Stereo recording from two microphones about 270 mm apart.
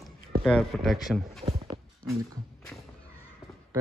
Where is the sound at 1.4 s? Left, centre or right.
Centre.